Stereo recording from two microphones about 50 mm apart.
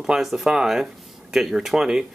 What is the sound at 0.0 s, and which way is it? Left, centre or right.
Speech, centre.